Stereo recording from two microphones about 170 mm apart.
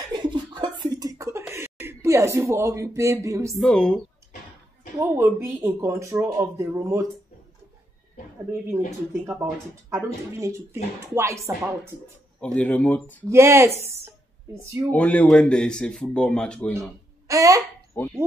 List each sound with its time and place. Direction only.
0.1 s a sound: 25° right (ahead or behind)
1.5 s speech: 15° right (ahead or behind)
3.5 s speech: 5° left (ahead or behind)
4.9 s speech: 15° right (ahead or behind)
8.5 s speech: 15° right (ahead or behind)
12.5 s speech: 10° left (ahead or behind)
13.3 s speech: 15° right (ahead or behind)
14.0 s a sound: 15° right (ahead or behind)
14.9 s speech: 10° left (ahead or behind)
17.3 s speech: 20° right (ahead or behind)
17.9 s fowl: 10° left (ahead or behind)